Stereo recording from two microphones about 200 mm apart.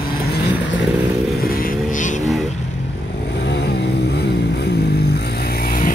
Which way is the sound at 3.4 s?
55° left (ahead or behind).